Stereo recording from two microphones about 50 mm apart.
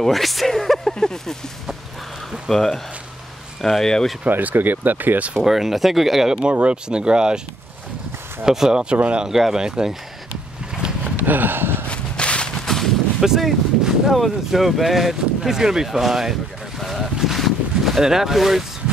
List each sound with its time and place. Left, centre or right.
0.0 s speech: centre
2.4 s speech: centre
4.3 s speech: right
5.3 s speech: centre
6.5 s speech: right
8.5 s speech: centre
8.9 s speech: right
9.2 s speech: centre
10.7 s a sound: centre
11.2 s a sound: right
11.9 s whip: left
12.6 s gunshot: centre
13.2 s speech: centre
16.8 s boat: centre